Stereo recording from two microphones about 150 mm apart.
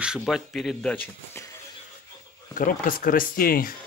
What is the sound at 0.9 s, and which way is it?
Speech, 15° left (ahead or behind).